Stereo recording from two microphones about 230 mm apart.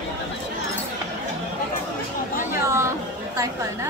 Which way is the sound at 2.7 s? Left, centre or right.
Centre.